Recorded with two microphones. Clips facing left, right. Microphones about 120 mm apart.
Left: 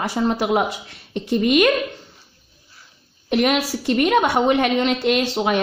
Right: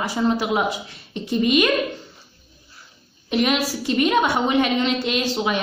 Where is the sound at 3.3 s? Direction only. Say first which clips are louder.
Left 2 dB; 60° left (ahead or behind).